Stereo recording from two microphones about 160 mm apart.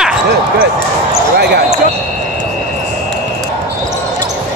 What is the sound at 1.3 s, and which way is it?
Basketball bounce, 90° right.